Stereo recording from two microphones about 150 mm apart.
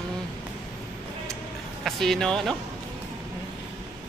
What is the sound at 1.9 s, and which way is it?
Speech, centre (ahead or behind).